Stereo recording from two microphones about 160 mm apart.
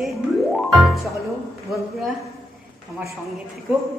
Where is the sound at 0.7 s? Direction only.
Centre (ahead or behind).